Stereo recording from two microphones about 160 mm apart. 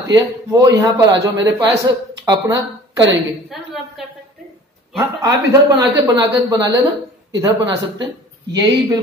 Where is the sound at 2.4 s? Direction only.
20° right (ahead or behind).